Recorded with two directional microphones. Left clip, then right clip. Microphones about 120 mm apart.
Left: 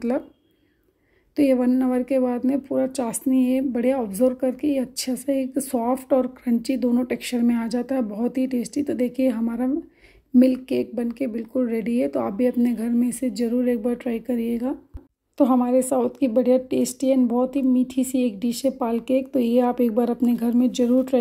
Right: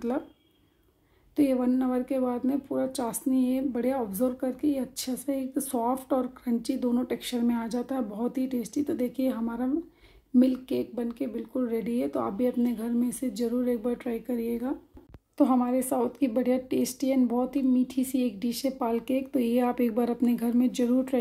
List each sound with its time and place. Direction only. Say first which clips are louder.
1.3 s a woman's voice: left 6 dB; 40° left (ahead or behind)
10.3 s a woman's voice: left 6 dB; 35° left (ahead or behind)
15.3 s a woman's voice: left 6 dB; 35° left (ahead or behind)